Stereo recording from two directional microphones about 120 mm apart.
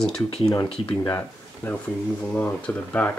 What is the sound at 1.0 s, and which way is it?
Speech, 15° left (ahead or behind).